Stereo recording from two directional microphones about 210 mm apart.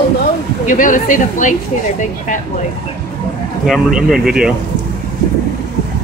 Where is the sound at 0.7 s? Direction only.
40° left (ahead or behind).